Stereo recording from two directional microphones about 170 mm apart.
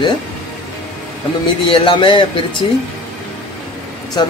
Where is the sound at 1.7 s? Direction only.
30° left (ahead or behind).